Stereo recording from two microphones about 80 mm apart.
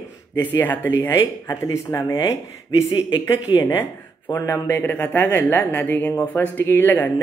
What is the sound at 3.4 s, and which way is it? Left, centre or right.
Speech, left.